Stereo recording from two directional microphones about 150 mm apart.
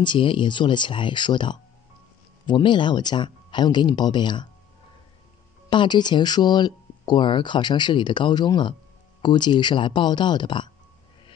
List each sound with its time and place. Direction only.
0.0 s speech: 35° left (ahead or behind)
5.7 s speech: 30° left (ahead or behind)